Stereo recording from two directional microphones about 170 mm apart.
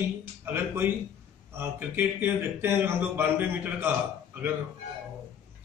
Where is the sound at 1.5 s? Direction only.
15° right (ahead or behind).